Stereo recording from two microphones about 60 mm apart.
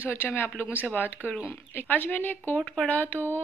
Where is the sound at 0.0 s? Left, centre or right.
Left.